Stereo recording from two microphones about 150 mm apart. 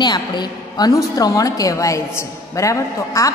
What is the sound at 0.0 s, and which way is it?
A woman's voice, 30° left (ahead or behind).